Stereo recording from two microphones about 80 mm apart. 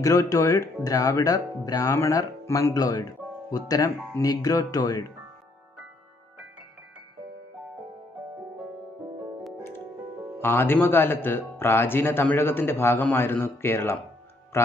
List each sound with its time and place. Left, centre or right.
0.0 s speech: left
2.7 s speech: left
10.4 s a man's voice: left